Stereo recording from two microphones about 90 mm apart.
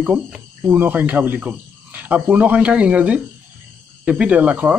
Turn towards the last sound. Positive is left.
turn(degrees=-15)  # may be behind; listen again after turning